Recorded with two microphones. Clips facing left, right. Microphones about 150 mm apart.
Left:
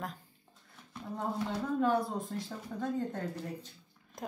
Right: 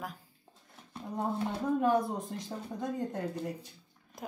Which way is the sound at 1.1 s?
20° right (ahead or behind).